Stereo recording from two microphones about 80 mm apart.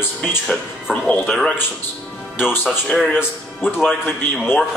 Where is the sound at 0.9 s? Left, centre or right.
Centre.